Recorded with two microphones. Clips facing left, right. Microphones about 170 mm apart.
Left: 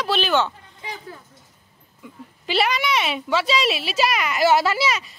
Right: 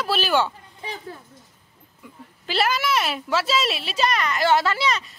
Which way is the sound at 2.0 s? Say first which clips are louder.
Left 3 dB; centre (ahead or behind).